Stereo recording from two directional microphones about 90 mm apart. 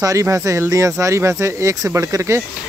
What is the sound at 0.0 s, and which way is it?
Speech, 35° right (ahead or behind).